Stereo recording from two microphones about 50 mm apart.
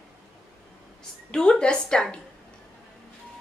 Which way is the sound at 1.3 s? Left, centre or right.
Centre.